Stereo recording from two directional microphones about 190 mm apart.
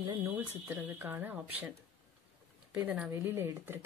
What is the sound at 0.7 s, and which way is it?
Speech, 10° right (ahead or behind).